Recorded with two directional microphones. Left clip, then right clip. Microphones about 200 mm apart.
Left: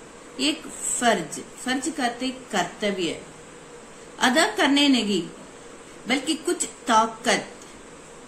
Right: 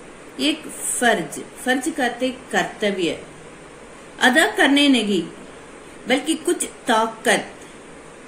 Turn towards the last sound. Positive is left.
turn(degrees=35)  # may be behind; listen again after turning